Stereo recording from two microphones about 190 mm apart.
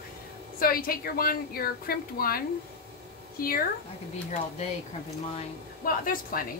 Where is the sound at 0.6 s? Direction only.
50° left (ahead or behind).